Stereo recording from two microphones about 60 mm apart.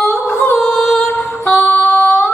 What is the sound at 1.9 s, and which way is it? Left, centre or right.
Female singing, left.